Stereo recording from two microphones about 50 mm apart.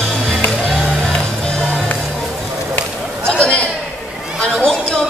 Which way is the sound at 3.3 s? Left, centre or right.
Centre.